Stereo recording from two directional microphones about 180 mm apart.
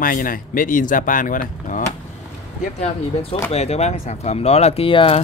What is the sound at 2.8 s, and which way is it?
Speech, 35° left (ahead or behind).